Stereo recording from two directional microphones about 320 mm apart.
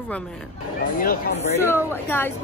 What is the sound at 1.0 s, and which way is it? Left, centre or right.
Speech, left.